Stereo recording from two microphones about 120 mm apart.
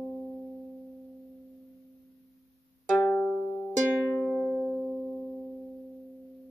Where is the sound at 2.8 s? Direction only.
15° left (ahead or behind); by 5.2 s centre (ahead or behind).